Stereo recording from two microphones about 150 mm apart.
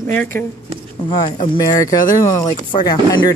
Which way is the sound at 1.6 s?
25° left (ahead or behind).